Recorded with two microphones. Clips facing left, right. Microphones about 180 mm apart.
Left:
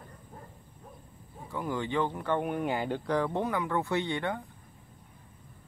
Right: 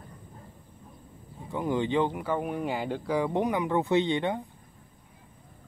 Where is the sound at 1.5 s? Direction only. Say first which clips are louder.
Right 5 dB; 20° right (ahead or behind).